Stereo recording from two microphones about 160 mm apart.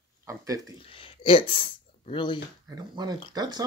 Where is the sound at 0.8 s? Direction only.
35° left (ahead or behind).